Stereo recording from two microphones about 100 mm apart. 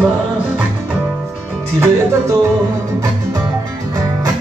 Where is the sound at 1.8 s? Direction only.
30° right (ahead or behind).